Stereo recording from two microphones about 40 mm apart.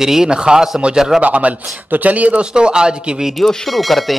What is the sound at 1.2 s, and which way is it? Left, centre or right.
Speech, right.